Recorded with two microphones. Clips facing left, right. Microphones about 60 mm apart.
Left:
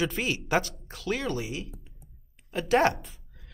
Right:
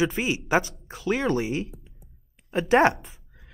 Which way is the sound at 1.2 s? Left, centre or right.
Right.